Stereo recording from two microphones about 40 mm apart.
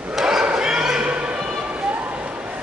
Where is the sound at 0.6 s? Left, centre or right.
Centre.